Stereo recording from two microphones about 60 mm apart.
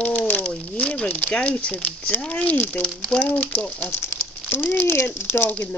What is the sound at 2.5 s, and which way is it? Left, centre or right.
Cat, left.